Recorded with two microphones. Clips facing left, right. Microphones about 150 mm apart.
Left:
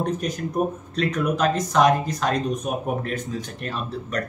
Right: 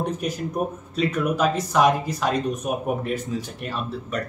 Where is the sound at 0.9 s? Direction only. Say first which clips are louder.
Right 1 dB; 5° right (ahead or behind).